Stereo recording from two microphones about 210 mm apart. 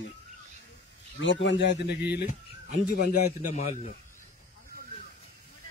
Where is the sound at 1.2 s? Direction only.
60° left (ahead or behind).